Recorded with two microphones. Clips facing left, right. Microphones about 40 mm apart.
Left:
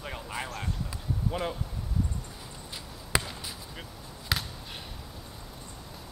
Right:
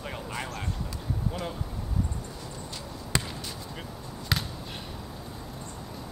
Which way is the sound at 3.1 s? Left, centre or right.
Centre.